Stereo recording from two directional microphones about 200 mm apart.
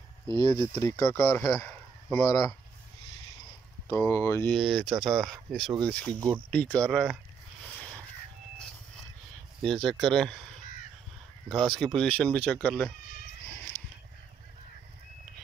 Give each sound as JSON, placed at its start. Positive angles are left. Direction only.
{"t": 0.3, "sound": "speech", "side_deg": 20}
{"t": 3.9, "sound": "speech", "side_deg": 10}
{"t": 4.6, "sound": "speech", "side_deg": 0}
{"t": 6.1, "sound": "speech", "side_deg": -15}
{"t": 6.5, "sound": "speech", "side_deg": 5}
{"t": 9.6, "sound": "speech", "side_deg": 0}